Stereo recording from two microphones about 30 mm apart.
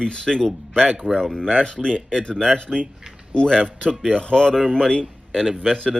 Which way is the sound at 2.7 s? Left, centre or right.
Centre.